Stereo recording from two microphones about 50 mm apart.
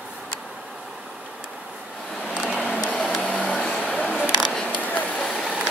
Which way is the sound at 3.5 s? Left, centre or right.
Centre.